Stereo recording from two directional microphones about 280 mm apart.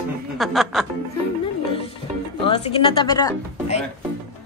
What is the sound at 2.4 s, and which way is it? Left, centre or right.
Speech, centre.